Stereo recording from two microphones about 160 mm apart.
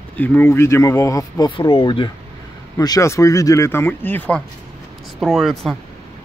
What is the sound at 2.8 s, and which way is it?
Speech, 20° left (ahead or behind).